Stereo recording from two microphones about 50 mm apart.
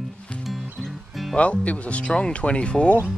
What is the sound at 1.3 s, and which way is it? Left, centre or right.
Speech, left.